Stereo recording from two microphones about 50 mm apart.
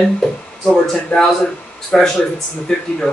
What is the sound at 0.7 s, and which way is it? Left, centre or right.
Speech, centre.